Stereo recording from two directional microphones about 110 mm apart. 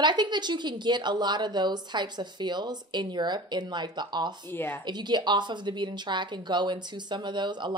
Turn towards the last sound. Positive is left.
turn(degrees=-45)  # may be behind; listen again after turning